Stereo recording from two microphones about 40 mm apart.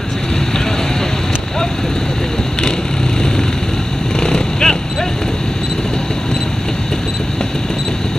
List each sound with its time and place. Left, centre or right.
4.2 s vehicle: centre